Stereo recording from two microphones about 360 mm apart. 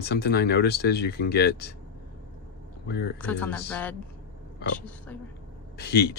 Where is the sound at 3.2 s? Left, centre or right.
Centre.